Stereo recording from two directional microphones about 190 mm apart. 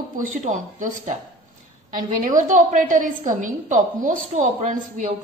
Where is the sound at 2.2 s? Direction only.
45° right (ahead or behind).